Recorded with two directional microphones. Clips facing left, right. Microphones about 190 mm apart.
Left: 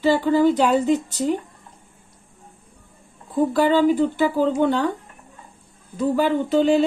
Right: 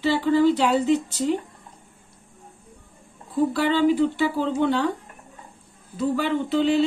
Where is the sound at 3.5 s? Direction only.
45° left (ahead or behind).